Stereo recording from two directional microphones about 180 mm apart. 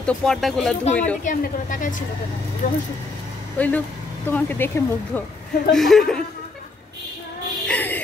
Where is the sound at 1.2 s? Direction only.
45° left (ahead or behind).